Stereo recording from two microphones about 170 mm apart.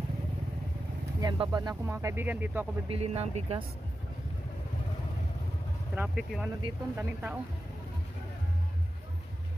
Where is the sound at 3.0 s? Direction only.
40° right (ahead or behind).